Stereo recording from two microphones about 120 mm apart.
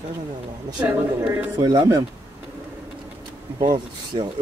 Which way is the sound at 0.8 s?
15° right (ahead or behind).